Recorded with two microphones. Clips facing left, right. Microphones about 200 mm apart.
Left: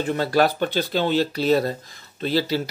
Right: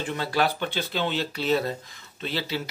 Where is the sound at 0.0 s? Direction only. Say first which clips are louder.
Left 6 dB; 40° left (ahead or behind).